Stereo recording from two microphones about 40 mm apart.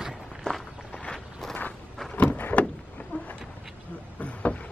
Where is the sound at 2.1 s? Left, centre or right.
Left.